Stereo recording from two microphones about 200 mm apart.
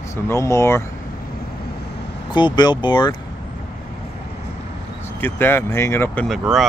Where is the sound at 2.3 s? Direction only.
20° left (ahead or behind).